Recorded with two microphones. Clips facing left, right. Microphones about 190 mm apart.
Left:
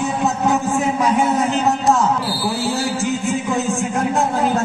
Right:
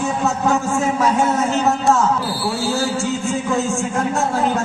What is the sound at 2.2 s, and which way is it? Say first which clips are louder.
Speech: even; centre (ahead or behind).